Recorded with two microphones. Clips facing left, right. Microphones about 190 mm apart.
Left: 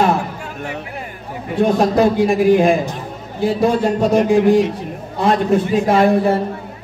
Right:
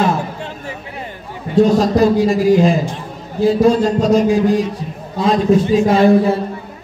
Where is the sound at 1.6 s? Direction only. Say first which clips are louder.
Right 2 dB; 55° left (ahead or behind).